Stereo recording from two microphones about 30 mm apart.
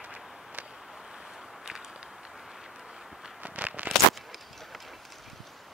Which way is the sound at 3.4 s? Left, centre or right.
Right.